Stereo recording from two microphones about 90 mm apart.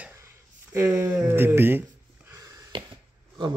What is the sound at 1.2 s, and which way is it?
Speech, 25° right (ahead or behind).